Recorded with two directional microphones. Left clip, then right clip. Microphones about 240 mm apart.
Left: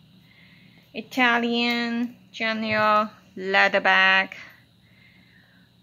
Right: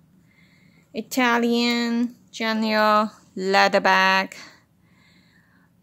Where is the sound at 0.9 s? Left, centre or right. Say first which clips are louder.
Even; right.